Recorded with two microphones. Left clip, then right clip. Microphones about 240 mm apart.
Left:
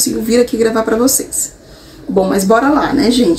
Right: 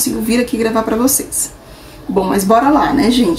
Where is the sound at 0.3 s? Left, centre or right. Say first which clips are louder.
Left 4 dB; centre.